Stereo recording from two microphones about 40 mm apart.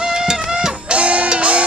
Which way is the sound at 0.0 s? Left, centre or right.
Centre.